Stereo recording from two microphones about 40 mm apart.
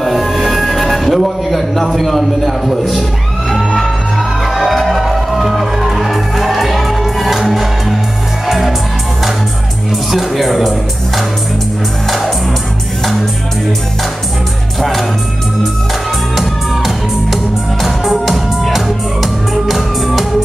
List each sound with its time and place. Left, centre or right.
0.0 s music: centre
10.1 s speech: centre
14.8 s music: centre
16.3 s music: centre